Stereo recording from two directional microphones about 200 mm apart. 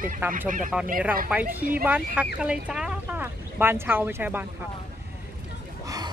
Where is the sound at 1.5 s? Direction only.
10° right (ahead or behind).